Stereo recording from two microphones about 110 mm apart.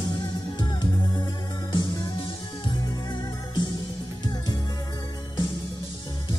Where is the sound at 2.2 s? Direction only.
50° left (ahead or behind).